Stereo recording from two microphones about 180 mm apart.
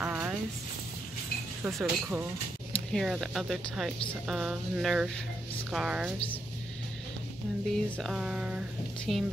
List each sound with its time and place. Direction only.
0.0 s a sound: 10° right (ahead or behind)
1.6 s speech: 5° right (ahead or behind)
7.7 s speech: centre (ahead or behind)